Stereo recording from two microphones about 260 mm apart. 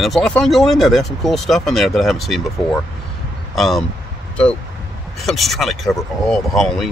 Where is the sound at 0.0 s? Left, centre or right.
Centre.